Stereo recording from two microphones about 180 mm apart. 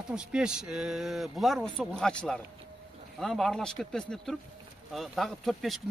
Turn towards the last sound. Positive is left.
turn(degrees=0)  # may be behind; listen again after turning